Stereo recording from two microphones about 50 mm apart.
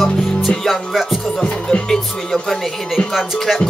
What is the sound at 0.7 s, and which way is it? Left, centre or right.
Music, centre.